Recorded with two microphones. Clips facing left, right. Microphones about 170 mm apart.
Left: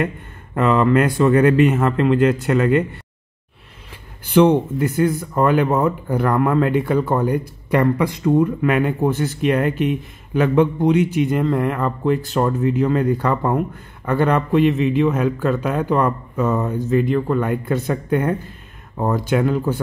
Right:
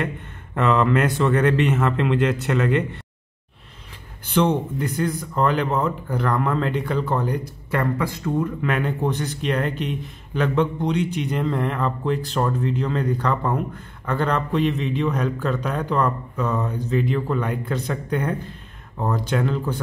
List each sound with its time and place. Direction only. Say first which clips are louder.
0.6 s speech: left 3 dB; centre (ahead or behind)
4.2 s speech: left 7 dB; 10° left (ahead or behind)
8.5 s speech: left 6 dB; 5° left (ahead or behind)